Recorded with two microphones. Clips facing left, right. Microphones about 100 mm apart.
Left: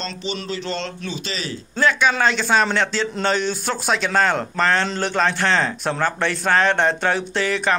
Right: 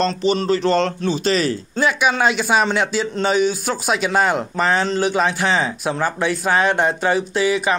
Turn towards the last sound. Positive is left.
turn(degrees=-5)  # may be behind; listen again after turning